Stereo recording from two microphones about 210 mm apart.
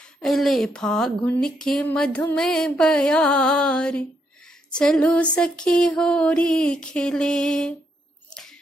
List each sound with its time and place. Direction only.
0.2 s speech: centre (ahead or behind)